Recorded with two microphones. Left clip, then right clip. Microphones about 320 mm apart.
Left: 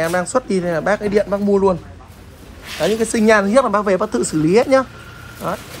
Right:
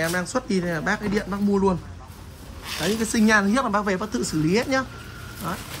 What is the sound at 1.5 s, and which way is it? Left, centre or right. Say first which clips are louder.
Speech: left 6 dB; left.